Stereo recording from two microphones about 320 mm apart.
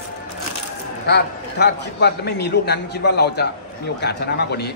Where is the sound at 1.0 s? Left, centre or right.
Left.